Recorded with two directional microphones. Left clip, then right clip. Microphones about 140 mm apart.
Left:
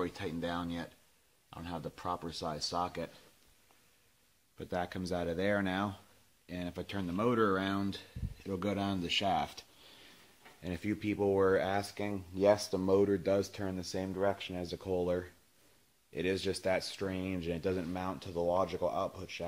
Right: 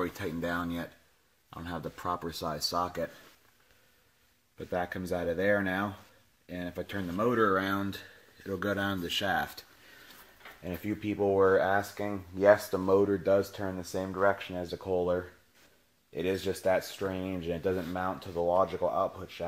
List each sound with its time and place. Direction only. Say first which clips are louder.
0.0 s speech: right 4 dB; centre (ahead or behind)
0.6 s speech: right 4 dB; 20° right (ahead or behind)
4.6 s speech: right 4 dB; 15° left (ahead or behind)
10.6 s speech: right 2 dB; 20° left (ahead or behind)
16.4 s speech: right 5 dB; 10° left (ahead or behind)